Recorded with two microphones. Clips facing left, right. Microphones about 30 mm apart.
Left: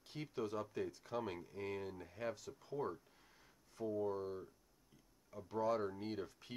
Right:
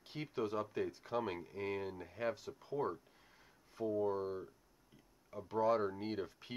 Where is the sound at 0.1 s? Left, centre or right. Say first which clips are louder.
Right 4 dB; centre.